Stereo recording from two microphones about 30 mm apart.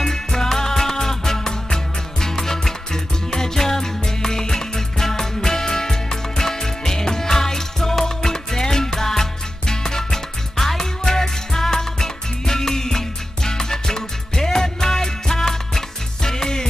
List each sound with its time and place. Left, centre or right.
0.0 s music: centre